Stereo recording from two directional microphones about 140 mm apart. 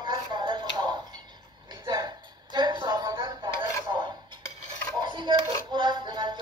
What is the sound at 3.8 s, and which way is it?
Cutlery, 35° right (ahead or behind).